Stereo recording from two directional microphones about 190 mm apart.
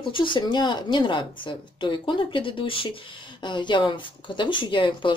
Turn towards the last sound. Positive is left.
turn(degrees=25)  # may be behind; listen again after turning